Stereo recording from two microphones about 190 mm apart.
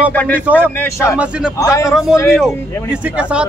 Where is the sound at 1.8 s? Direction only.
Centre (ahead or behind).